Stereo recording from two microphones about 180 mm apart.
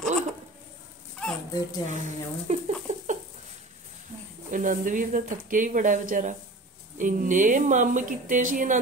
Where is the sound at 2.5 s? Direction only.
35° right (ahead or behind).